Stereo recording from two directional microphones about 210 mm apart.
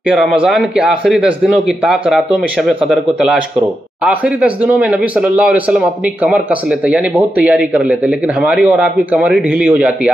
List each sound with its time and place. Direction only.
0.1 s speech: centre (ahead or behind)